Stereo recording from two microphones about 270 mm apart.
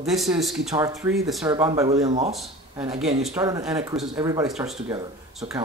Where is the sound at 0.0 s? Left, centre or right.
Centre.